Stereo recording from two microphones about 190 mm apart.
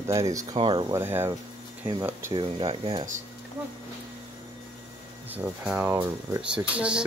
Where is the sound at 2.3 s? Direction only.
25° right (ahead or behind).